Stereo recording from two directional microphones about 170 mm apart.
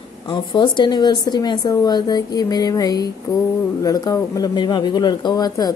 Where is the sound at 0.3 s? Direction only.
25° left (ahead or behind).